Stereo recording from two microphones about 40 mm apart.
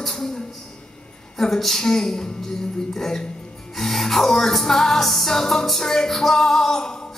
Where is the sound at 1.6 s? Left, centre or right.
Centre.